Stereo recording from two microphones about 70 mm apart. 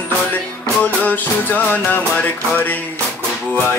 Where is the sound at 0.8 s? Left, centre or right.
Left.